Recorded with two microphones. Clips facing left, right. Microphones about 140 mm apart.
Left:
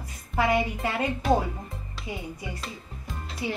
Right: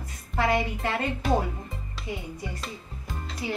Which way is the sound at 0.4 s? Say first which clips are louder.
Left 1 dB; 10° left (ahead or behind).